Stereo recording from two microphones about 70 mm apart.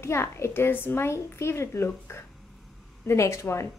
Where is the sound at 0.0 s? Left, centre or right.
Left.